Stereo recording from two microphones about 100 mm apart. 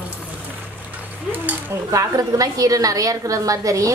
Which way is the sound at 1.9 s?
35° right (ahead or behind).